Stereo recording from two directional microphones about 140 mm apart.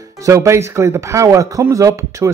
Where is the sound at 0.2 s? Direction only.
20° right (ahead or behind).